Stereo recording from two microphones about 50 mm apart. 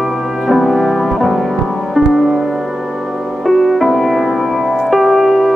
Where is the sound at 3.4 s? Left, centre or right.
Centre.